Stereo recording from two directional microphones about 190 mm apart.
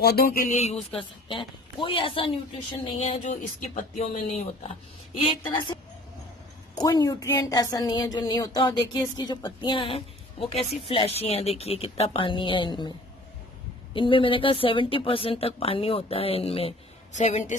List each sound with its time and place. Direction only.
0.0 s a sound: 55° left (ahead or behind)
0.6 s speech: 30° left (ahead or behind)
6.8 s speech: 20° left (ahead or behind)
13.9 s speech: 25° left (ahead or behind)